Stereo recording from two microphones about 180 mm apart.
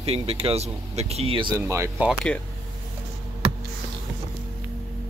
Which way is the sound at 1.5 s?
15° right (ahead or behind).